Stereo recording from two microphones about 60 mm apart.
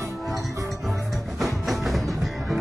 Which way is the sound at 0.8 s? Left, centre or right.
Centre.